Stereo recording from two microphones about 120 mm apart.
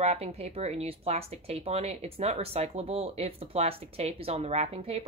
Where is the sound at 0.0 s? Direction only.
60° right (ahead or behind).